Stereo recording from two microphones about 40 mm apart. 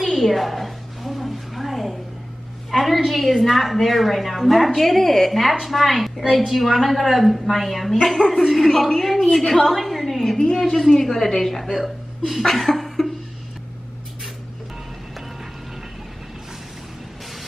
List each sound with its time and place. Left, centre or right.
0.0 s a sound: centre
3.0 s a woman's voice: centre
8.0 s a woman's voice: centre